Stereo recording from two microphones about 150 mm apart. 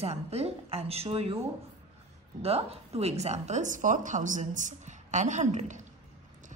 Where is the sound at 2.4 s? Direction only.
40° right (ahead or behind).